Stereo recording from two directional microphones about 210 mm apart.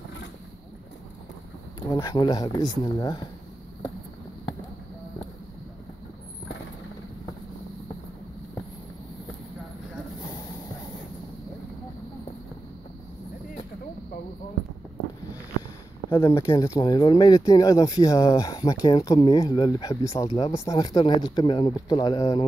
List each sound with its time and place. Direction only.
1.8 s speech: 15° left (ahead or behind)
16.1 s speech: 15° left (ahead or behind)